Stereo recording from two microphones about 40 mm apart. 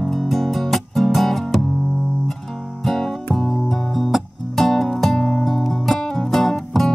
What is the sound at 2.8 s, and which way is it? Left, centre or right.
Music, centre.